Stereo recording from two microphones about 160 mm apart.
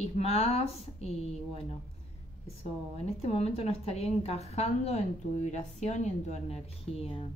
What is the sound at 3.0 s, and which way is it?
A woman's voice, 40° left (ahead or behind).